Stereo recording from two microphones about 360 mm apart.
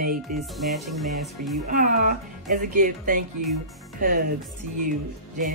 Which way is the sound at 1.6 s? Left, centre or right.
Right.